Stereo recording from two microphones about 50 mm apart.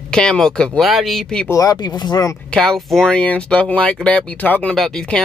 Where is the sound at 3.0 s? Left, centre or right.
Left.